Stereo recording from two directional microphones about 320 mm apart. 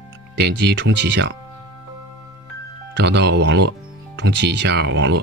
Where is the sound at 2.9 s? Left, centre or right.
Right.